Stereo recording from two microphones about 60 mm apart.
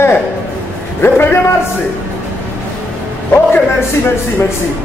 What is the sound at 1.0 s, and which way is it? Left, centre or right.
Speech, left.